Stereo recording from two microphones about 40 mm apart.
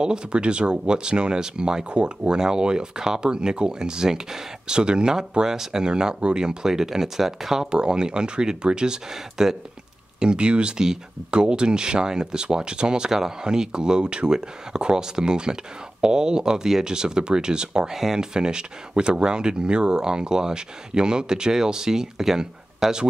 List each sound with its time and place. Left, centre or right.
0.0 s speech: right
7.7 s speech: right
10.2 s speech: right